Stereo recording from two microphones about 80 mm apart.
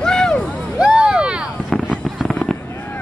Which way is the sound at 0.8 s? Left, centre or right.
Centre.